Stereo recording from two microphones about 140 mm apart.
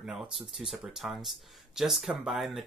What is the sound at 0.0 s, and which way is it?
Speech, 5° right (ahead or behind).